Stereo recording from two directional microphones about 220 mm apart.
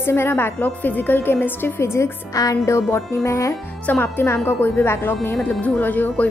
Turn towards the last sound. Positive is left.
turn(degrees=5)  # may be behind; listen again after turning